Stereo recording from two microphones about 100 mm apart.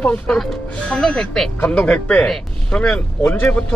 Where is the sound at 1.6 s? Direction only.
15° left (ahead or behind).